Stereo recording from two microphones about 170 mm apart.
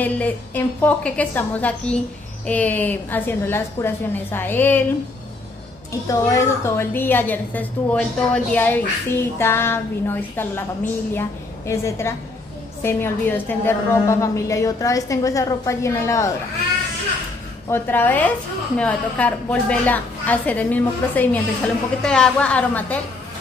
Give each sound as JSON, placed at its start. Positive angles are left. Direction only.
{"t": 0.0, "sound": "a woman's voice", "side_deg": 10}
{"t": 6.0, "sound": "a woman's voice", "side_deg": 15}
{"t": 17.6, "sound": "a woman's voice", "side_deg": 10}